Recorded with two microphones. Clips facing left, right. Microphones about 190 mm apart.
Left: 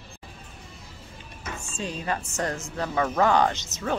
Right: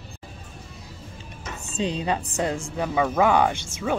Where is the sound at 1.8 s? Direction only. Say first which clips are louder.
Right 6 dB; 20° right (ahead or behind).